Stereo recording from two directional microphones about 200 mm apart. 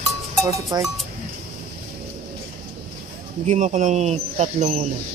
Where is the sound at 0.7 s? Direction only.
20° right (ahead or behind).